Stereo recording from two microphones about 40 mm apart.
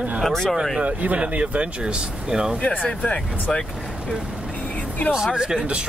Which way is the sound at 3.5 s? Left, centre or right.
Centre.